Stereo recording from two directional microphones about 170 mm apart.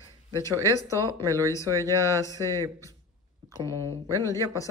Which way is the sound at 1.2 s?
20° right (ahead or behind).